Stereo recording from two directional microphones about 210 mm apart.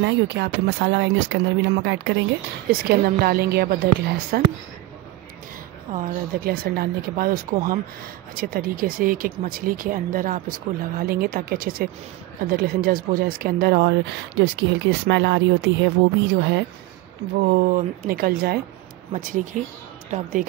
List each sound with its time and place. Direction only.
0.0 s speech: 55° right (ahead or behind)
2.7 s speech: 45° right (ahead or behind)
5.9 s speech: 40° right (ahead or behind)
17.5 s speech: 40° right (ahead or behind)